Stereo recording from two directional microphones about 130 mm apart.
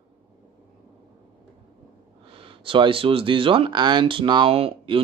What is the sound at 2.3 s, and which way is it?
Speech, 45° right (ahead or behind).